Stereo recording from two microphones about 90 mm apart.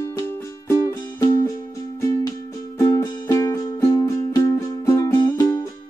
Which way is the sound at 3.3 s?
35° left (ahead or behind).